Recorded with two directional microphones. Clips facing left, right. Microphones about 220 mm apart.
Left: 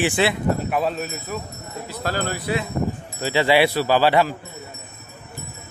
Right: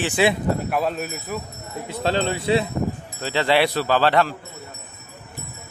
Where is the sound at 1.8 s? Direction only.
25° right (ahead or behind).